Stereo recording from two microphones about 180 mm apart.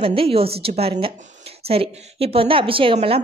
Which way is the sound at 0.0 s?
30° right (ahead or behind).